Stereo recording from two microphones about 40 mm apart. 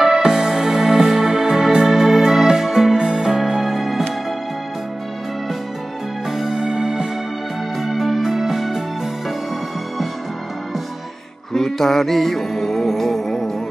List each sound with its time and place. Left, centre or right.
0.0 s music: centre
6.3 s music: centre
7.8 s music: centre
11.5 s music: centre